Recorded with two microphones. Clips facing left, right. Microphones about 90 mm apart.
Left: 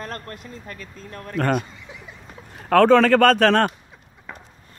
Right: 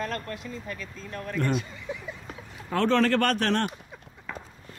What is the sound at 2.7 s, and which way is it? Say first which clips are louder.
Speech: left 11 dB; 85° left.